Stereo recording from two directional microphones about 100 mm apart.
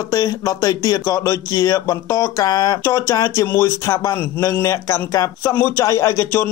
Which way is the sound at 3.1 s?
40° left (ahead or behind).